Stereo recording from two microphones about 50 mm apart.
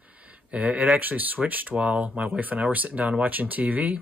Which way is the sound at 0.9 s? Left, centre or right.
Right.